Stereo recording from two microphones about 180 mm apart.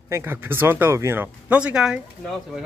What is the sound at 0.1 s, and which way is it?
Speech, 10° right (ahead or behind).